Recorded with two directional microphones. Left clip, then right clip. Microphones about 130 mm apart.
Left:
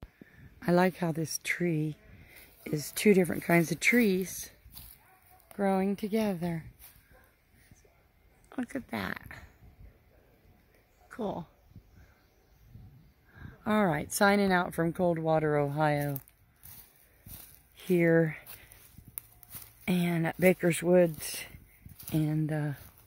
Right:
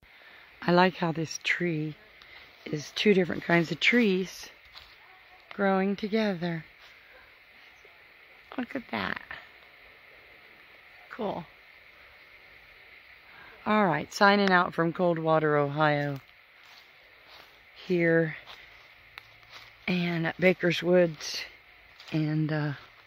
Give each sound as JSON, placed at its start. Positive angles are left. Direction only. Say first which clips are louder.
{"t": 0.6, "sound": "speech", "louder": "right 4 dB", "side_deg": 0}
{"t": 1.7, "sound": "speech", "louder": "even", "side_deg": 20}
{"t": 4.1, "sound": "speech", "louder": "right 2 dB", "side_deg": -10}
{"t": 5.6, "sound": "speech", "louder": "right 3 dB", "side_deg": -5}
{"t": 8.5, "sound": "speech", "louder": "right 3 dB", "side_deg": 10}
{"t": 11.1, "sound": "speech", "louder": "right 3 dB", "side_deg": 15}
{"t": 13.7, "sound": "speech", "louder": "right 3 dB", "side_deg": 0}
{"t": 17.7, "sound": "speech", "louder": "right 1 dB", "side_deg": 20}
{"t": 19.8, "sound": "speech", "louder": "right 2 dB", "side_deg": 10}
{"t": 22.3, "sound": "speech", "louder": "right 3 dB", "side_deg": -20}